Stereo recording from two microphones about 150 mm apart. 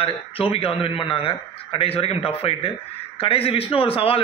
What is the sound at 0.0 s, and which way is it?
A man's voice, 40° left (ahead or behind).